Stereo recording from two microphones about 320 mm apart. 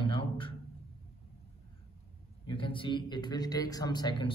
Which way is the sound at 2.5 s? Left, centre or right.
Centre.